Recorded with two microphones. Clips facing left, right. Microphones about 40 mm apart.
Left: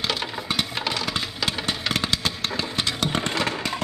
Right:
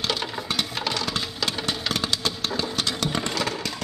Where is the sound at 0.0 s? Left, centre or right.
Centre.